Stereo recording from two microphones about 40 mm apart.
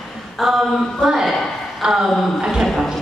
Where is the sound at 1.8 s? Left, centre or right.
Right.